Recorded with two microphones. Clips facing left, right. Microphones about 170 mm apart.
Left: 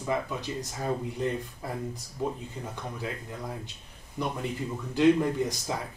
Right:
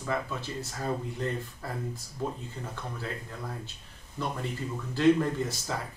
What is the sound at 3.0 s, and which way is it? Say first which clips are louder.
Speech: left 2 dB; 15° left (ahead or behind).